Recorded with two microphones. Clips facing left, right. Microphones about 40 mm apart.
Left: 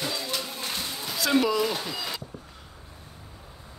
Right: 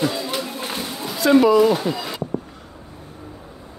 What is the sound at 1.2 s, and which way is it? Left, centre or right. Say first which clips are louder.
Speech: right 10 dB; centre.